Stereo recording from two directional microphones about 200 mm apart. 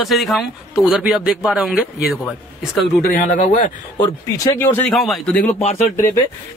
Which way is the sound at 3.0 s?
40° left (ahead or behind).